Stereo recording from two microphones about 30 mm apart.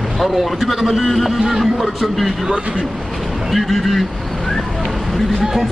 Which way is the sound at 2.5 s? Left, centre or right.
Right.